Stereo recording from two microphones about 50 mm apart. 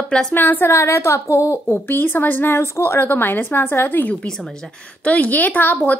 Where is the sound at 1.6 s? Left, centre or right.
Left.